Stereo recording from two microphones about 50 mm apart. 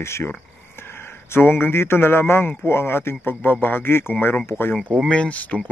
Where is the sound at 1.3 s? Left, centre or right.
Left.